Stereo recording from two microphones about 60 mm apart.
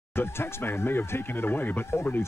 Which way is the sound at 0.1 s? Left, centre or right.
Left.